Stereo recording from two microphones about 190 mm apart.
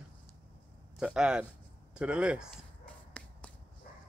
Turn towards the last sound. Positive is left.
turn(degrees=5)  # may be behind; listen again after turning